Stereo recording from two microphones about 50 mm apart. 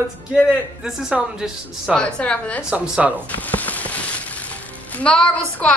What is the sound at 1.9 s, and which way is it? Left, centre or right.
Speech, centre.